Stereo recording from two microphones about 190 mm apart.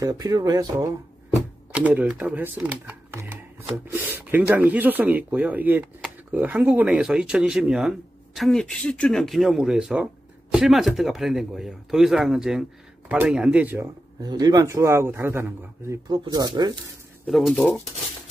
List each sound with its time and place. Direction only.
0.0 s speech: 20° right (ahead or behind)
17.3 s speech: centre (ahead or behind)